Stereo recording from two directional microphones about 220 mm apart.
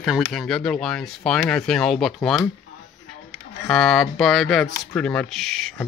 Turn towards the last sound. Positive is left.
turn(degrees=0)  # may be behind; listen again after turning